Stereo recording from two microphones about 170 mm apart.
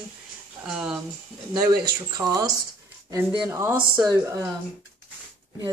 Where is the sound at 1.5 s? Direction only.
20° right (ahead or behind).